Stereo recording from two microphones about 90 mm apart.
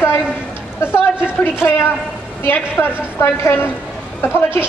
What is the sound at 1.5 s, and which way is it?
A woman's voice, 25° left (ahead or behind).